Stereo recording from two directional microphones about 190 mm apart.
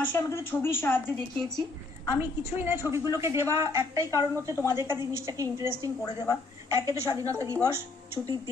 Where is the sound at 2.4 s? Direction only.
10° right (ahead or behind).